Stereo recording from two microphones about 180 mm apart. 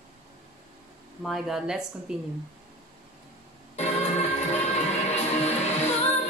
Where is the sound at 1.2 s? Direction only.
Centre (ahead or behind).